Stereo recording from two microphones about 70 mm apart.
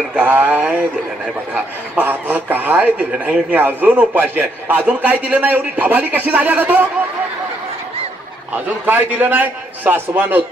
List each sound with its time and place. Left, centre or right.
0.1 s a man's voice: right
8.6 s a man's voice: right